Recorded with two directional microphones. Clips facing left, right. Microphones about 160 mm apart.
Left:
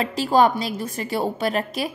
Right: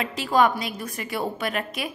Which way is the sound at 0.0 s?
35° left (ahead or behind).